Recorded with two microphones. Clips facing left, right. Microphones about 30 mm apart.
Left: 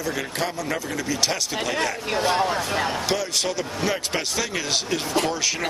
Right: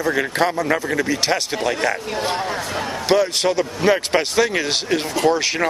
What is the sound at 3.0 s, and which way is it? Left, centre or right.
Speech, right.